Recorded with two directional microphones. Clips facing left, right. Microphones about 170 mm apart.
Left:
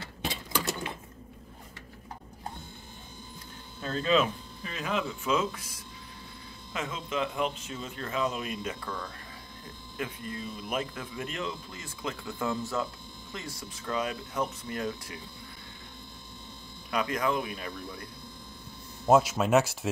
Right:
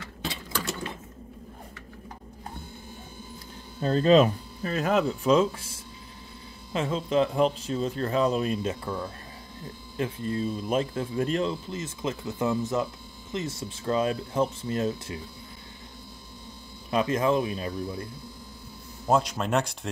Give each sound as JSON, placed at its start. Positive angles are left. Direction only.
{"t": 3.8, "sound": "speech", "side_deg": -40}
{"t": 11.7, "sound": "speech", "side_deg": -20}
{"t": 16.9, "sound": "speech", "side_deg": -25}
{"t": 19.0, "sound": "speech", "side_deg": 5}